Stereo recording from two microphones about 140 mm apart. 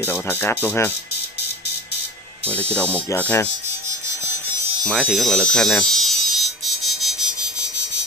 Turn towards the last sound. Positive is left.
turn(degrees=0)  # may be behind; listen again after turning